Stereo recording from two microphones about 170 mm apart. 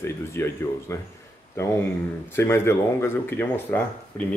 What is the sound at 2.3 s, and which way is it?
Speech, 15° left (ahead or behind).